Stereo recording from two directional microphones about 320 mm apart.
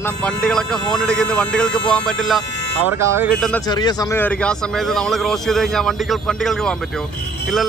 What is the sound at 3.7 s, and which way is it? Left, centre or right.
A man's voice, centre.